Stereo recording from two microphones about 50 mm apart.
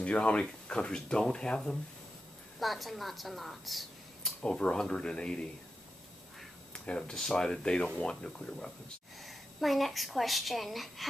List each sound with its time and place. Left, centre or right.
0.0 s speech: left
2.6 s speech: centre
4.4 s speech: left
6.7 s speech: centre
9.2 s a woman's voice: centre